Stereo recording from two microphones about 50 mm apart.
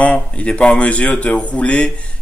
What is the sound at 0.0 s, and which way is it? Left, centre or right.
Speech, left.